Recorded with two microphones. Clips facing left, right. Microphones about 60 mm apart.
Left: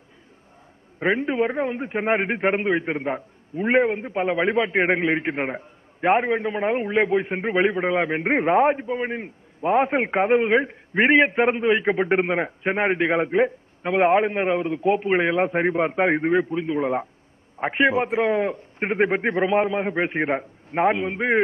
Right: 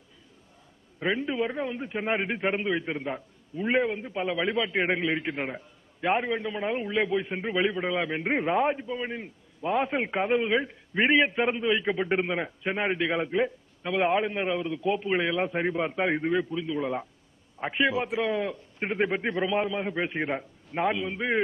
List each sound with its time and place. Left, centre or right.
0.9 s a man's voice: left